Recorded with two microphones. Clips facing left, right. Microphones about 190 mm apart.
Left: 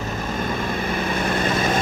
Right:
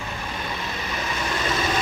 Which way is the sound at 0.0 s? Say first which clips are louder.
Left 6 dB; 45° left (ahead or behind).